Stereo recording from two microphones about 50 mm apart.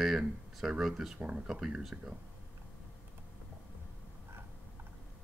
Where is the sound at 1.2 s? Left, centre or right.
Right.